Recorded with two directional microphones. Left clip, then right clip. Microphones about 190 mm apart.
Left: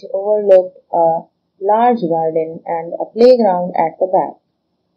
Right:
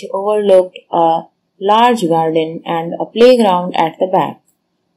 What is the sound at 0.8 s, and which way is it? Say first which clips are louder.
Speech: right 1 dB; 55° right (ahead or behind).